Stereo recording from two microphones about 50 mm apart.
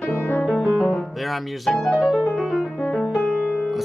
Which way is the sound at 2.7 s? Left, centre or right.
Centre.